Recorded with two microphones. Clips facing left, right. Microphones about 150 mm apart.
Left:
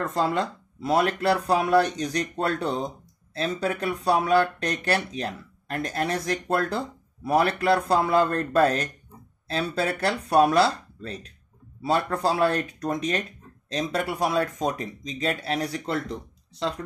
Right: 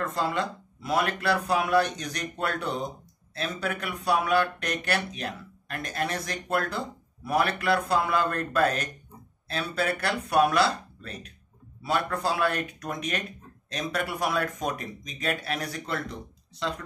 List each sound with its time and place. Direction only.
0.0 s speech: 40° left (ahead or behind)